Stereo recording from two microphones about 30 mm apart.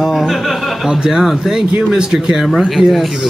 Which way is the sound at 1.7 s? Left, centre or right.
Right.